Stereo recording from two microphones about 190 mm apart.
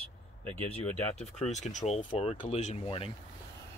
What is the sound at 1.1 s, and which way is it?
Speech, 35° left (ahead or behind).